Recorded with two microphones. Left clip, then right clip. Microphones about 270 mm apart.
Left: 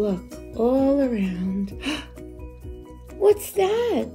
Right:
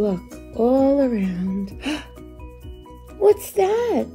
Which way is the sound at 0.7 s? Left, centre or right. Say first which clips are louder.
Right 3 dB; centre.